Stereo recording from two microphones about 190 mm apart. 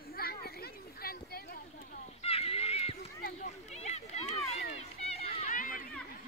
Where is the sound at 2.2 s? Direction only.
30° left (ahead or behind).